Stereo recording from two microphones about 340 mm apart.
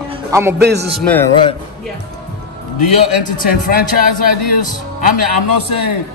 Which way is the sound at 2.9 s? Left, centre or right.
Left.